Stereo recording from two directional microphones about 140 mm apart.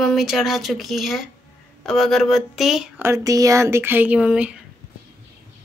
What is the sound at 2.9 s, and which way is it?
Speech, 20° right (ahead or behind).